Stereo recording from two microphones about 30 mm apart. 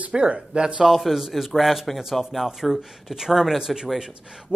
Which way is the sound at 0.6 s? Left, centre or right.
Right.